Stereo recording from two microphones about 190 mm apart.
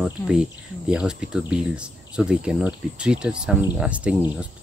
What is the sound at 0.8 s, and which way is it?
Speech, 5° right (ahead or behind).